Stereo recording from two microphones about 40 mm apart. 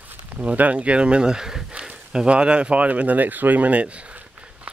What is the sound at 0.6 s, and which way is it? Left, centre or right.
Speech, right.